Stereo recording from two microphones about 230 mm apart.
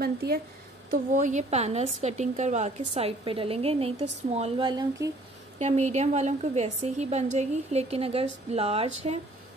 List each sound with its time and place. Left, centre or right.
0.0 s a woman's voice: right; by 5.1 s centre
5.6 s a woman's voice: right